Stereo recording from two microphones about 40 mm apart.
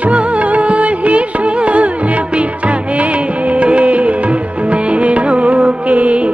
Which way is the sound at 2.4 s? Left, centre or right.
Right.